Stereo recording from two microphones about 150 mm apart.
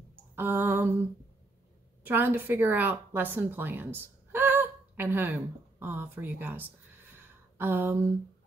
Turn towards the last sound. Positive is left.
turn(degrees=-15)  # may be behind; listen again after turning